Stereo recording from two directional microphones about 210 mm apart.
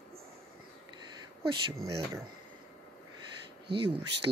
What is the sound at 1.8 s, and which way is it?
Speech, 15° right (ahead or behind).